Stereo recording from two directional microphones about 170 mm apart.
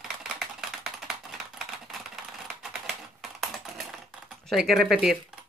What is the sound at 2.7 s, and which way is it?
Typing, centre (ahead or behind).